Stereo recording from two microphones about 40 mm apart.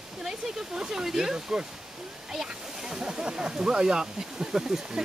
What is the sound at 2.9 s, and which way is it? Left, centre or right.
Speech, right.